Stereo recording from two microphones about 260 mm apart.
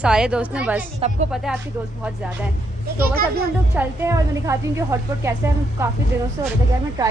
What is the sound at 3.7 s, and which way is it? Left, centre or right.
A woman's voice, centre.